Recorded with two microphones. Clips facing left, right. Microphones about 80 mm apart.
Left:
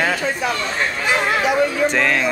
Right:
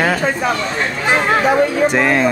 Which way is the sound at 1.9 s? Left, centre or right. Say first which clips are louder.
Right 4 dB; centre.